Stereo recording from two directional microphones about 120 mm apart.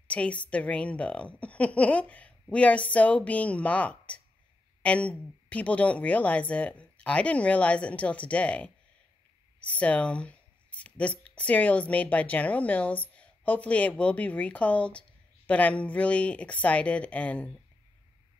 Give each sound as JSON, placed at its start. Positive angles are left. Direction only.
{"t": 0.1, "sound": "speech", "side_deg": 10}